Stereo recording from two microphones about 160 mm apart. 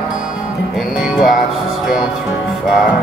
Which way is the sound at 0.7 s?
Centre (ahead or behind).